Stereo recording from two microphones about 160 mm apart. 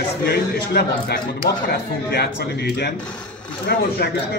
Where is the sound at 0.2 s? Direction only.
80° left.